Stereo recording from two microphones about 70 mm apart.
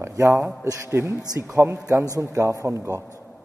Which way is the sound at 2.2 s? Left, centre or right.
Right.